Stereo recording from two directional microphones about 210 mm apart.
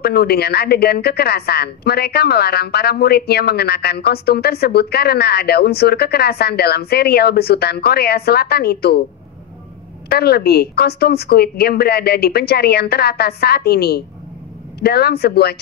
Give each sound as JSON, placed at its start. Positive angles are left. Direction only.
{"t": 0.0, "sound": "a woman's voice", "side_deg": 50}
{"t": 10.0, "sound": "a woman's voice", "side_deg": 50}